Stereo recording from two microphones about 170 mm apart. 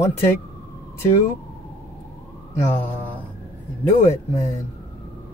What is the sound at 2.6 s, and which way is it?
Speech, 15° left (ahead or behind).